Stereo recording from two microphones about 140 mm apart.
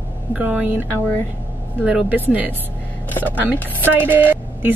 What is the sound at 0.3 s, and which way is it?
Speech, 10° right (ahead or behind).